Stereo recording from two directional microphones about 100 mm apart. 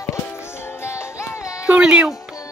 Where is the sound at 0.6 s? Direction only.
25° left (ahead or behind).